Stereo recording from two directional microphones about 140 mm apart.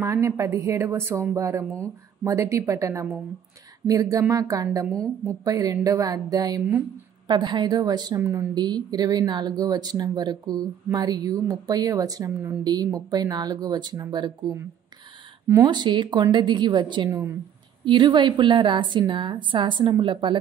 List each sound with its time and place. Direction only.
0.0 s a woman's voice: 20° right (ahead or behind)
8.5 s speech: 30° right (ahead or behind)
15.6 s a woman's voice: 30° right (ahead or behind)